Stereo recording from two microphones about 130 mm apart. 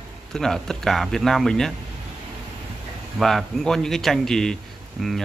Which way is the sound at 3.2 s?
Centre (ahead or behind).